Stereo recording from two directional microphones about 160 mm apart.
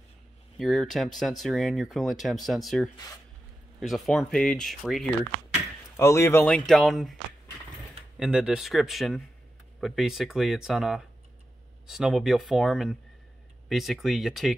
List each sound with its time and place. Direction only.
0.6 s speech: centre (ahead or behind)
5.9 s speech: 15° left (ahead or behind)
6.4 s speech: 5° left (ahead or behind)
8.2 s speech: 5° right (ahead or behind)